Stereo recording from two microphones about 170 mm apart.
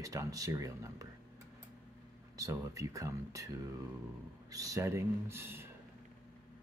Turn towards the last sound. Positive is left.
turn(degrees=-15)  # may be behind; listen again after turning